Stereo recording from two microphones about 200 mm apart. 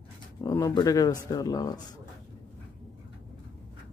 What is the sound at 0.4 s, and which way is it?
Speech, 15° left (ahead or behind).